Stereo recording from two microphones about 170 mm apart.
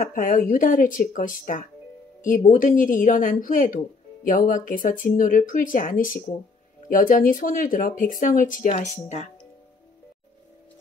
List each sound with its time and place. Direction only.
0.0 s speech: 55° left (ahead or behind)